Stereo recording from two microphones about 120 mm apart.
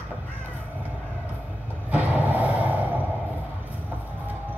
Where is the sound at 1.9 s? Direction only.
15° right (ahead or behind).